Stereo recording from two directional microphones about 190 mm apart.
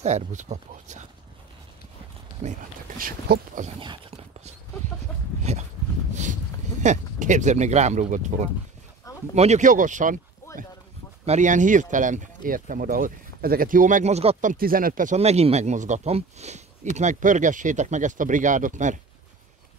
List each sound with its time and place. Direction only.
0.0 s speech: 40° right (ahead or behind)
3.0 s speech: 50° right (ahead or behind)
5.4 s dog: 35° right (ahead or behind)
6.8 s speech: 40° right (ahead or behind)
11.2 s speech: 40° right (ahead or behind)